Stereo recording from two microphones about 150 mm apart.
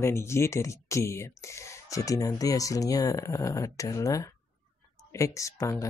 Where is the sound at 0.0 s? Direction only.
15° left (ahead or behind).